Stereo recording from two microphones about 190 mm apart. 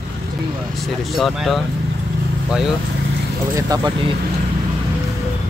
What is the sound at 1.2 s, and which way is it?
Speech, centre (ahead or behind).